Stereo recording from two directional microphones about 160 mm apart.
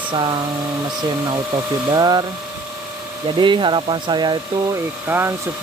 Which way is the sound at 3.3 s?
30° right (ahead or behind).